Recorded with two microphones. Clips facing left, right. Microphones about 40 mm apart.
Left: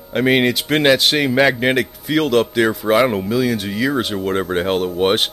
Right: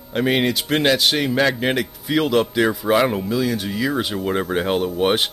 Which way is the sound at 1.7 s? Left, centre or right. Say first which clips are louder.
Left 3 dB; centre.